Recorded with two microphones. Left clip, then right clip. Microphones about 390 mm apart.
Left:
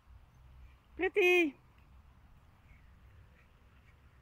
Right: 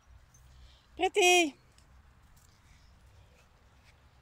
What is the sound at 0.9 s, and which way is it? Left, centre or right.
Speech, centre.